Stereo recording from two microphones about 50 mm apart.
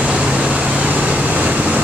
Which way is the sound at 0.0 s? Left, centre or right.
Centre.